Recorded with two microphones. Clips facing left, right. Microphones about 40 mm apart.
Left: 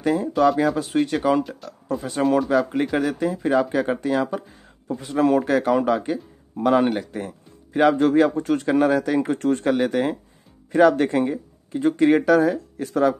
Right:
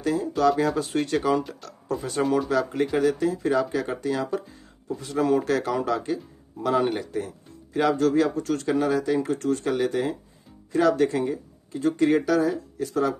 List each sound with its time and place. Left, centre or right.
0.0 s speech: left
0.4 s speech: centre
0.7 s speech: centre
2.5 s speech: left
11.2 s speech: left